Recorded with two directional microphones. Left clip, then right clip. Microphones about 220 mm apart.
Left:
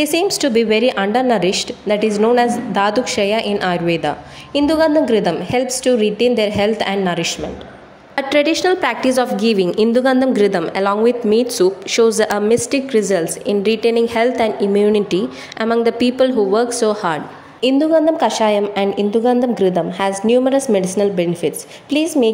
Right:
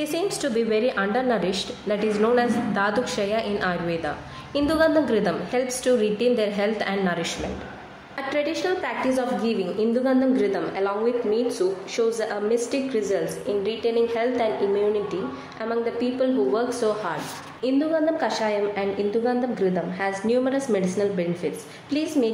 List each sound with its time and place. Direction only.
0.0 s a woman's voice: 35° left (ahead or behind)